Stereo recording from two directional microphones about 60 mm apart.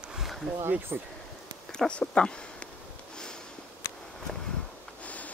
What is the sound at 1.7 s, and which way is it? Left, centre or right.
Speech, centre.